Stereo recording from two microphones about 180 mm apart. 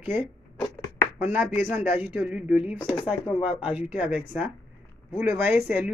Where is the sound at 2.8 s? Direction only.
25° left (ahead or behind).